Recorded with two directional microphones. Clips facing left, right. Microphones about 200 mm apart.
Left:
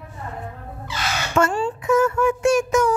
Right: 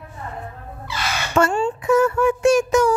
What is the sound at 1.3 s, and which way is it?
Speech, 30° right (ahead or behind).